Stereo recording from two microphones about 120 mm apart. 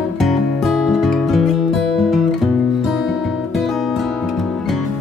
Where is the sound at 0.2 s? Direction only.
Centre (ahead or behind).